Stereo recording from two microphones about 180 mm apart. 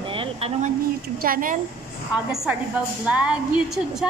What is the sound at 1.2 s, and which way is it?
Speech, 50° right (ahead or behind).